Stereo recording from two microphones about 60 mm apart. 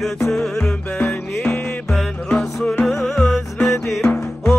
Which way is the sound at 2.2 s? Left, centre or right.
Centre.